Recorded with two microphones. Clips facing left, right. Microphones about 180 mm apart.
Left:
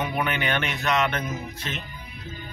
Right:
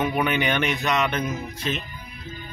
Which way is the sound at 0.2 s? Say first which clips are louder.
Right 3 dB; 15° right (ahead or behind).